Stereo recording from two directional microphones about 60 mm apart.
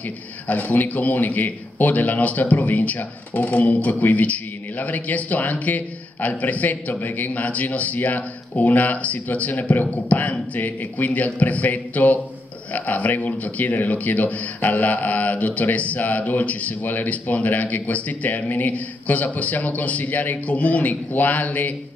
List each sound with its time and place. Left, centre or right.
0.5 s a man's voice: left